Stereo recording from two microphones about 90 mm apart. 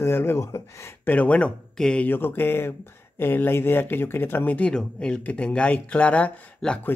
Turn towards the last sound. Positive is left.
turn(degrees=15)  # may be behind; listen again after turning